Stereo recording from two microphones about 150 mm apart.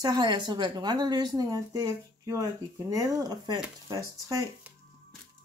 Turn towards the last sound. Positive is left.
turn(degrees=-20)  # may be behind; listen again after turning